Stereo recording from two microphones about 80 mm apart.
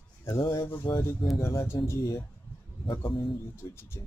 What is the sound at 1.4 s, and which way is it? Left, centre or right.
Speech, left.